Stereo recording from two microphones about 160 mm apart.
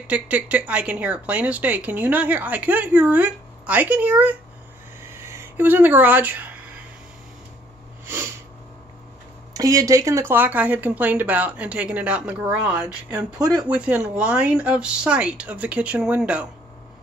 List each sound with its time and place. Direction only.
0.0 s a woman's voice: 10° right (ahead or behind)
9.5 s a woman's voice: 20° right (ahead or behind)
13.1 s speech: 25° right (ahead or behind)
13.7 s a woman's voice: 10° right (ahead or behind)